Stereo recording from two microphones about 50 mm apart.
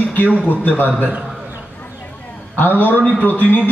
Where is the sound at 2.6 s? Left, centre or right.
Left.